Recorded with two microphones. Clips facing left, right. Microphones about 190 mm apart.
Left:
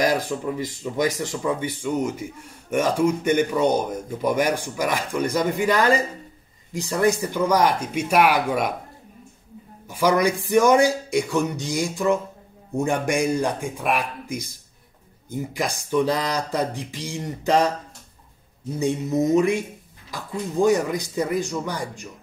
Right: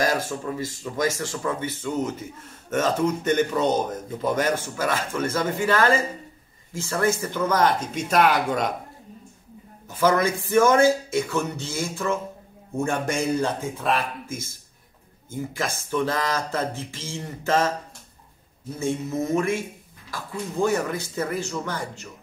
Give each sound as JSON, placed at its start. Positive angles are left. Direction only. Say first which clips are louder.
{"t": 0.0, "sound": "speech", "louder": "left 2 dB", "side_deg": 15}
{"t": 9.8, "sound": "speech", "louder": "left 1 dB", "side_deg": 10}
{"t": 18.8, "sound": "speech", "louder": "left 4 dB", "side_deg": 15}